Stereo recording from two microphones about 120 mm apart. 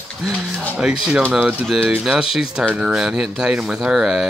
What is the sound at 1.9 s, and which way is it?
Speech, 5° right (ahead or behind).